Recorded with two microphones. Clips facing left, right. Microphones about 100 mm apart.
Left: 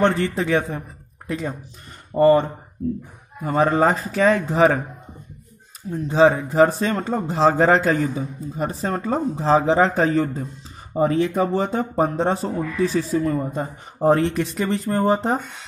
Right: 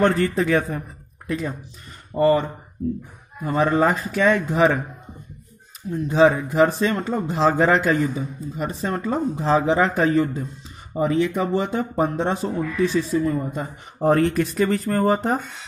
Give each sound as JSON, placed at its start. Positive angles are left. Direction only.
{"t": 0.0, "sound": "a man's voice", "side_deg": 25}
{"t": 5.9, "sound": "speech", "side_deg": 35}
{"t": 13.9, "sound": "speech", "side_deg": 30}